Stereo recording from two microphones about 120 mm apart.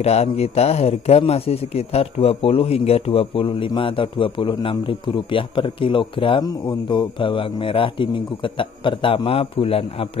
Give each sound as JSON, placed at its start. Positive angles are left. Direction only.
{"t": 0.0, "sound": "a man's voice", "side_deg": 60}